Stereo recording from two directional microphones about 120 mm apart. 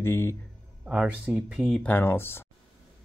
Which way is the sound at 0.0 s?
20° left (ahead or behind).